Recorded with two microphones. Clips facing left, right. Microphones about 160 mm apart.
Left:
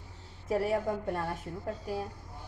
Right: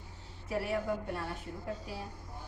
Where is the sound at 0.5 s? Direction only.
45° left (ahead or behind).